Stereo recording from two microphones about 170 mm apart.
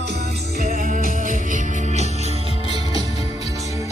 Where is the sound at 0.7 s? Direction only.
55° right (ahead or behind).